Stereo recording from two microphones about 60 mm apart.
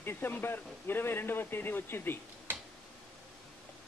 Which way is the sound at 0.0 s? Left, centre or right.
Left.